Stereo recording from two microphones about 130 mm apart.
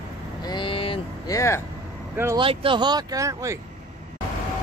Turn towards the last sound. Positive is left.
turn(degrees=-25)  # may be behind; listen again after turning